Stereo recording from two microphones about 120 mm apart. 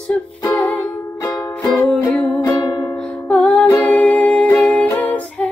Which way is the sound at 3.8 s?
10° left (ahead or behind).